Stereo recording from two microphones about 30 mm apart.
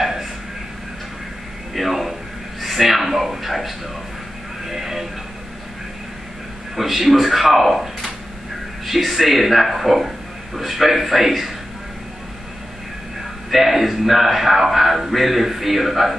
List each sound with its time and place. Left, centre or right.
0.0 s a sound: centre
1.7 s a man's voice: centre
6.8 s speech: centre
13.5 s speech: centre